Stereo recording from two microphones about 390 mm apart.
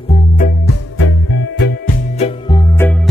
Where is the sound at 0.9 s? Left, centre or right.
Left.